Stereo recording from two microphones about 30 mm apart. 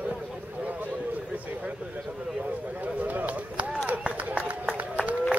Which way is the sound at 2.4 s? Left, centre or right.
Right.